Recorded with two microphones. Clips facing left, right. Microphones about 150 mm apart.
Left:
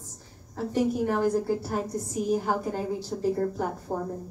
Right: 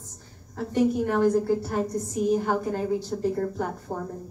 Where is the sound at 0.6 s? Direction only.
5° left (ahead or behind).